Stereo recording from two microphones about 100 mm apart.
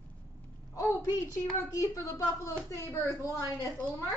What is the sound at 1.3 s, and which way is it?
Speech, 30° left (ahead or behind).